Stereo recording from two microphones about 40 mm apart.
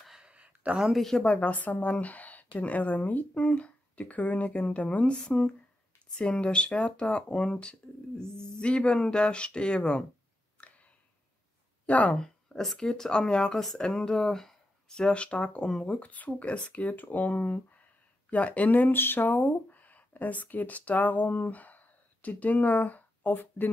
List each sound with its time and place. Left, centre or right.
0.2 s a sound: right
0.9 s speech: centre
1.3 s speech: left
11.8 s speech: left
12.5 s speech: left
12.8 s speech: centre
13.7 s speech: centre
14.1 s a sound: centre
15.0 s speech: left
18.9 s speech: left